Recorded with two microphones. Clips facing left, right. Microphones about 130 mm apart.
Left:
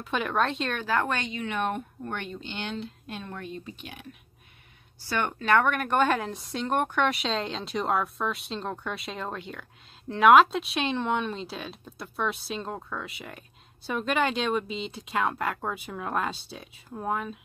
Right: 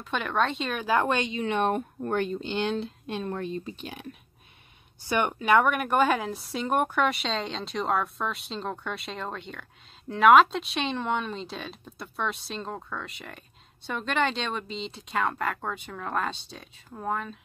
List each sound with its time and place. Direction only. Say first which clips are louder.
0.0 s speech: even; centre (ahead or behind); by 1.4 s 20° right (ahead or behind)
1.4 s speech: right 4 dB; 30° right (ahead or behind)
5.0 s speech: right 3 dB; 15° right (ahead or behind); by 17.4 s 5° left (ahead or behind)